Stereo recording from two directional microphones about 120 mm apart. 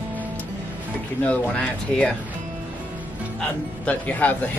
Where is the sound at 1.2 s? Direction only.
10° left (ahead or behind).